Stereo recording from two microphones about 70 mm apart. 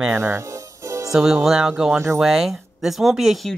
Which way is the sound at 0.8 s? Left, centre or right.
Right.